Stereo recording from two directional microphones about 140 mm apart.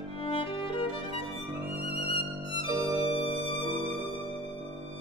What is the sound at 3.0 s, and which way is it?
Music, 40° left (ahead or behind).